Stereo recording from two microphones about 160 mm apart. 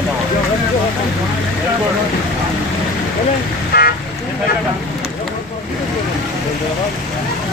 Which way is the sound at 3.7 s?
80° left.